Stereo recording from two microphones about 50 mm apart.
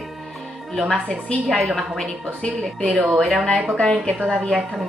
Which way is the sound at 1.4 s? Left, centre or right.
Centre.